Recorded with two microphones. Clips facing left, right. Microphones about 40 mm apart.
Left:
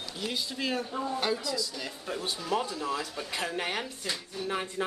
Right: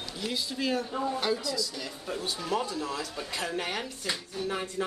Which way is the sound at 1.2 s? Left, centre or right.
Centre.